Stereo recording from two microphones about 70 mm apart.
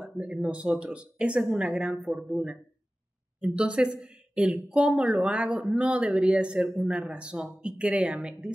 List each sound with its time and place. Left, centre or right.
0.0 s a woman's voice: centre